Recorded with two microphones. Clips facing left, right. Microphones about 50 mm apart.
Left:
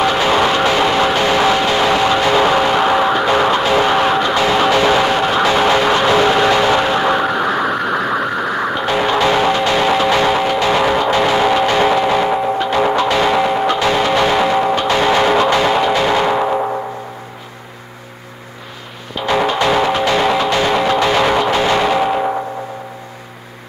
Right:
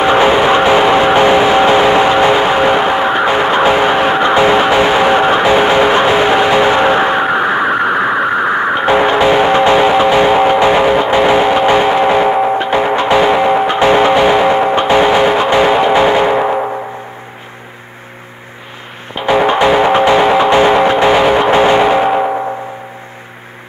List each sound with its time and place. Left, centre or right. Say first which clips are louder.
0.0 s music: right 5 dB; right
19.1 s music: right 5 dB; right